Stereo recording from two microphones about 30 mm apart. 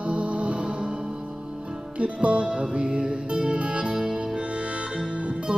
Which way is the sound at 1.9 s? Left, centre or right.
Right.